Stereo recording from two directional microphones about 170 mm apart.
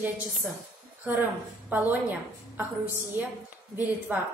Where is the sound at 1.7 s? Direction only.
10° right (ahead or behind).